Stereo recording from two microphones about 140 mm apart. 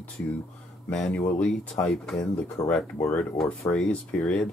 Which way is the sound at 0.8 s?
10° left (ahead or behind).